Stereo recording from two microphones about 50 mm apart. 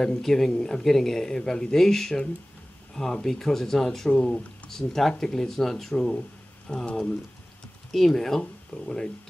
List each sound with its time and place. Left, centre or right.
0.0 s speech: centre